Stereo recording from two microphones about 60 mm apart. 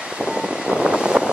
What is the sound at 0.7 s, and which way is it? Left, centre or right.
Vehicle, centre.